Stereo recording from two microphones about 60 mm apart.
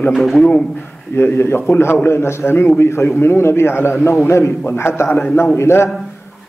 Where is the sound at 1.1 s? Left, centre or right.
Left.